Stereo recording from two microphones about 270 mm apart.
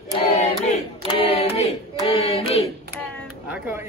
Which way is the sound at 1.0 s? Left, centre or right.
Left.